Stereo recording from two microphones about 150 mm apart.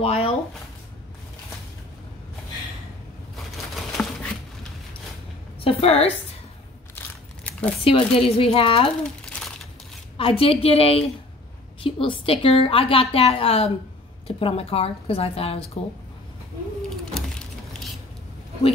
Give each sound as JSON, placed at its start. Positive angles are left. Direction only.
{"t": 0.0, "sound": "speech", "side_deg": 40}
{"t": 3.7, "sound": "a sound", "side_deg": 0}
{"t": 5.6, "sound": "a woman's voice", "side_deg": 40}
{"t": 7.8, "sound": "a woman's voice", "side_deg": 35}
{"t": 9.2, "sound": "crumpling", "side_deg": 5}
{"t": 10.1, "sound": "a woman's voice", "side_deg": 40}